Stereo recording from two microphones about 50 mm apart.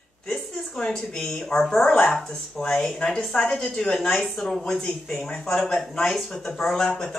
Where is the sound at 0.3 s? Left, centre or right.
Centre.